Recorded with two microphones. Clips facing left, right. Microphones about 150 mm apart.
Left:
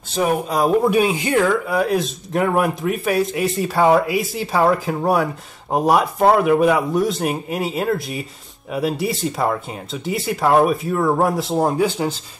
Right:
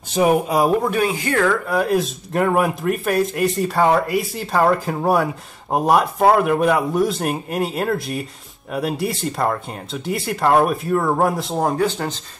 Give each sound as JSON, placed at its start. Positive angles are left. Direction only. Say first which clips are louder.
{"t": 0.1, "sound": "speech", "louder": "right 3 dB", "side_deg": -15}
{"t": 0.8, "sound": "speech", "louder": "left 3 dB", "side_deg": 15}
{"t": 1.7, "sound": "speech", "louder": "even", "side_deg": 0}